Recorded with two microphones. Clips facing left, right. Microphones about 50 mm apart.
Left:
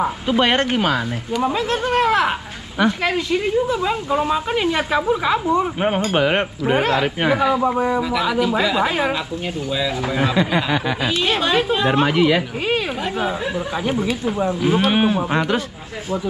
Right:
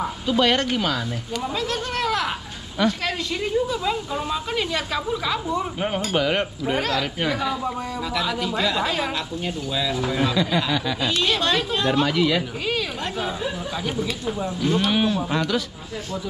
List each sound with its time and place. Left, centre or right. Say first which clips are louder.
0.0 s speech: left 3 dB; left
8.0 s speech: left 6 dB; centre
9.7 s speech: left 3 dB; centre
10.0 s speech: left 4 dB; left
11.0 s speech: left 3 dB; centre
11.9 s speech: left 3 dB; left
14.2 s speech: left 6 dB; left
14.6 s speech: left 3 dB; centre
14.9 s speech: left 4 dB; left